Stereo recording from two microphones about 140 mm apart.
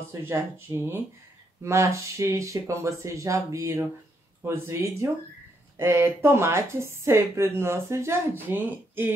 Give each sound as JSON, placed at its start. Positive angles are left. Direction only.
{"t": 0.2, "sound": "a woman's voice", "side_deg": -15}